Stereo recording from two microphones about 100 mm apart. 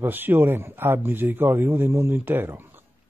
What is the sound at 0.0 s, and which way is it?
Speech, 20° right (ahead or behind).